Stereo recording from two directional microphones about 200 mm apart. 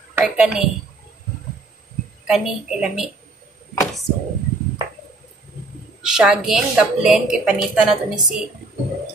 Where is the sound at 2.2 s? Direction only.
Centre (ahead or behind).